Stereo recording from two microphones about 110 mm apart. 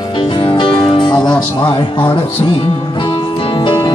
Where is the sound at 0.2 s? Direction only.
50° left (ahead or behind).